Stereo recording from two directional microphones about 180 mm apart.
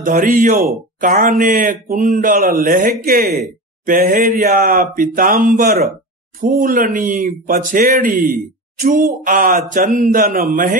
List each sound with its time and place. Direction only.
0.0 s speech: 50° right (ahead or behind)